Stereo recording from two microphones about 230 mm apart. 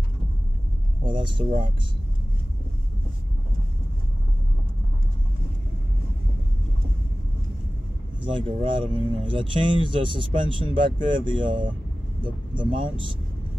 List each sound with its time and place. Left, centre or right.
1.0 s speech: right
8.2 s speech: right